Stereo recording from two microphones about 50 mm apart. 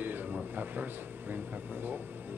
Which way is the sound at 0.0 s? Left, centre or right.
Right.